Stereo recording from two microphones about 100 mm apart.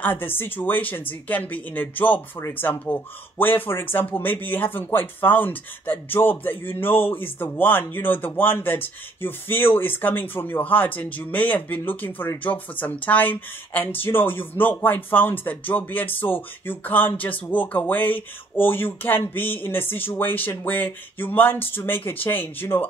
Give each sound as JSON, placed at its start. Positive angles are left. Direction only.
{"t": 0.0, "sound": "speech", "side_deg": 20}